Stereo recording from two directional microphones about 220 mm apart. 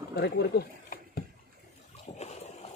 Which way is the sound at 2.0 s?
30° left (ahead or behind).